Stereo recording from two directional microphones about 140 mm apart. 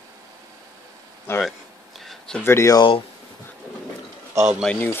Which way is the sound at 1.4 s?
Centre (ahead or behind).